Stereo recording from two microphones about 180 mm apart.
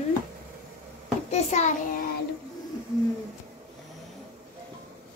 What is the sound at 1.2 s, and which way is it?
Speech, 40° left (ahead or behind).